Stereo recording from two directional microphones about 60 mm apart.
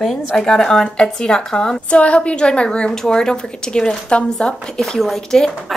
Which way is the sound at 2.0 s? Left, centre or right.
Left.